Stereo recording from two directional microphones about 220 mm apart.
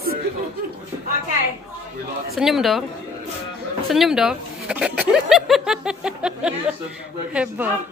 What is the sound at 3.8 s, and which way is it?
Speech, centre (ahead or behind).